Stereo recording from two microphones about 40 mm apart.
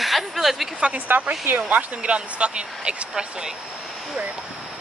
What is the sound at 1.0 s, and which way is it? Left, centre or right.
Speech, right.